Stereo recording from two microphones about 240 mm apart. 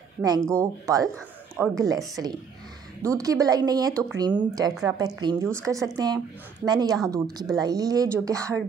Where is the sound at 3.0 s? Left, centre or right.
Centre.